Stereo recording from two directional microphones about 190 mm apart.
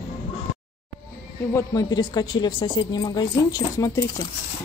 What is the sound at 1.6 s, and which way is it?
Speech, 20° left (ahead or behind).